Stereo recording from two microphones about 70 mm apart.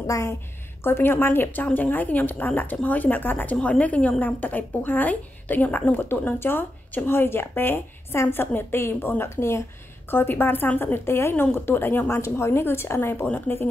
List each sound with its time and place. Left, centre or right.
0.0 s a woman's voice: left
0.8 s a woman's voice: left
3.5 s a woman's voice: centre; by 13.3 s left